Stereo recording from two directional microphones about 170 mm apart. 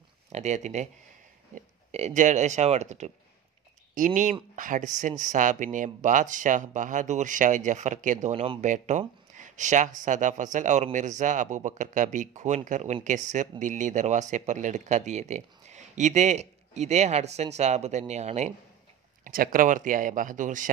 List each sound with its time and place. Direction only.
0.3 s speech: 40° right (ahead or behind)
19.2 s speech: 55° right (ahead or behind)